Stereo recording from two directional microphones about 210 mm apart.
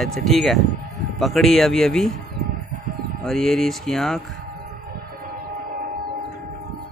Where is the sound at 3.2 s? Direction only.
Centre (ahead or behind).